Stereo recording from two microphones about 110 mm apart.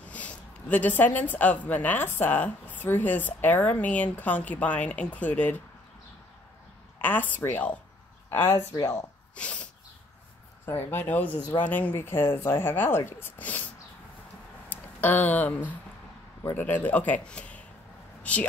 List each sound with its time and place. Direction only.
0.0 s speech: 15° left (ahead or behind)
7.0 s speech: 15° left (ahead or behind)
8.7 s speech: 30° left (ahead or behind)
9.3 s sneeze: 10° left (ahead or behind)
10.6 s speech: 20° left (ahead or behind)
14.7 s speech: 15° left (ahead or behind)